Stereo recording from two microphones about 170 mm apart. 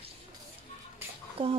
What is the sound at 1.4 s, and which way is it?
Speech, 30° right (ahead or behind).